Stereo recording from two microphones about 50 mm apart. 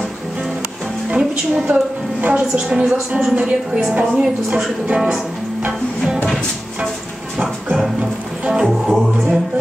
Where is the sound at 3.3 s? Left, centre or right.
Right.